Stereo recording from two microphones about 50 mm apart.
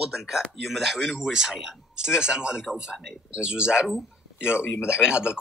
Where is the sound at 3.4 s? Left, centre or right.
Centre.